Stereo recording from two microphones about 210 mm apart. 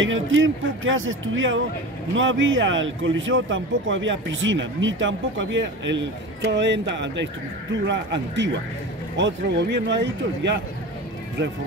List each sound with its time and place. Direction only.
0.0 s speech: 65° right (ahead or behind)